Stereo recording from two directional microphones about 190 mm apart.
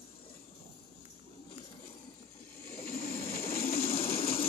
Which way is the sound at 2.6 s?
50° left (ahead or behind).